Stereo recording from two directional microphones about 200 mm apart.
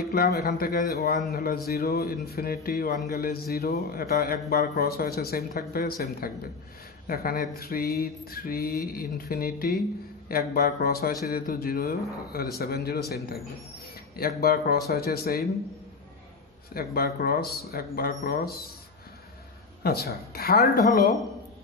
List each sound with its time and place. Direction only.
0.1 s speech: 50° left (ahead or behind)
14.1 s speech: 50° left (ahead or behind)
16.7 s speech: 50° left (ahead or behind)
19.8 s speech: 50° left (ahead or behind)